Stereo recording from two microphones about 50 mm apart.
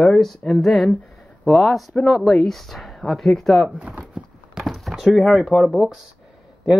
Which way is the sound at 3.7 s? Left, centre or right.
Right.